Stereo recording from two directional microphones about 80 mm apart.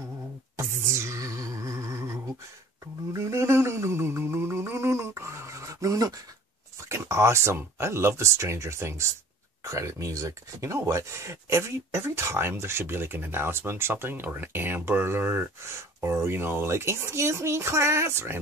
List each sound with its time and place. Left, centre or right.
0.6 s music: right
6.8 s speech: right